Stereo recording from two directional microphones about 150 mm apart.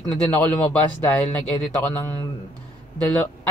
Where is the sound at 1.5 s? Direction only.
25° left (ahead or behind).